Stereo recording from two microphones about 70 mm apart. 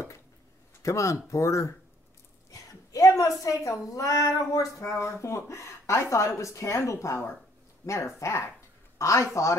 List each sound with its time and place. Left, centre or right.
0.8 s a woman's voice: left
8.9 s a sound: left
9.3 s a woman's voice: left